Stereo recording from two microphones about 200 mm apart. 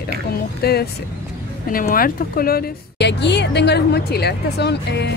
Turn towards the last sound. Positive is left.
turn(degrees=55)  # may be behind; listen again after turning